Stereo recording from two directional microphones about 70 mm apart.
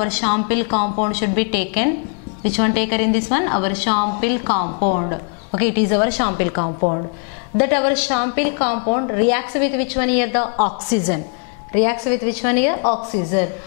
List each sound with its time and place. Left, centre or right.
0.0 s a woman's voice: centre